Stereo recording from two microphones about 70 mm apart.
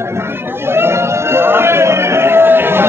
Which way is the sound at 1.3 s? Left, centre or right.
Right.